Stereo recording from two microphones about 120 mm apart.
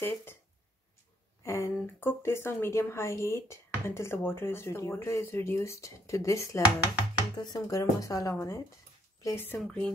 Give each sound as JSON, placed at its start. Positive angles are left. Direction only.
{"t": 0.0, "sound": "a woman's voice", "side_deg": 20}
{"t": 1.4, "sound": "a woman's voice", "side_deg": 25}